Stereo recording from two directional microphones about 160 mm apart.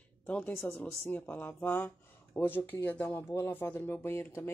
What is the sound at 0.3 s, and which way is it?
Speech, 10° left (ahead or behind).